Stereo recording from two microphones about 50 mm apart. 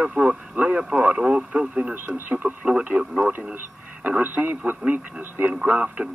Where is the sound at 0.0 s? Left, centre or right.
Right.